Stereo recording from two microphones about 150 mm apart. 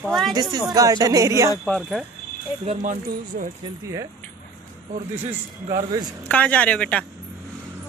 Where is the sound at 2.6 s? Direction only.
55° right (ahead or behind).